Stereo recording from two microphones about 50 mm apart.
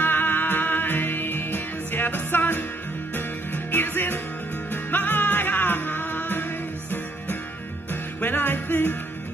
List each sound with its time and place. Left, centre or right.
0.0 s music: left